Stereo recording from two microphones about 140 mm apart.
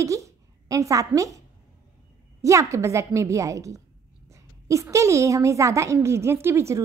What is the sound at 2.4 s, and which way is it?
A woman's voice, 20° right (ahead or behind).